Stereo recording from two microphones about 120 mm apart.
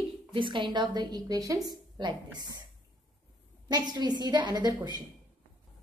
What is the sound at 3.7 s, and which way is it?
A woman's voice, 35° right (ahead or behind).